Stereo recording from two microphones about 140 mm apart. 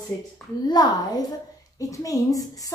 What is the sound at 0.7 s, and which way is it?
A woman's voice, 30° left (ahead or behind).